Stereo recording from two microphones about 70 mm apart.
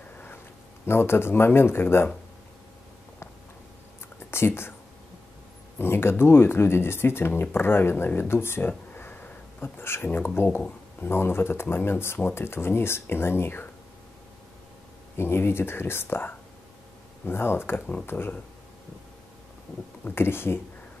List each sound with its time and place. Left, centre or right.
0.8 s speech: left
4.3 s speech: left
5.8 s speech: left
15.1 s speech: left
17.3 s speech: left
20.1 s speech: left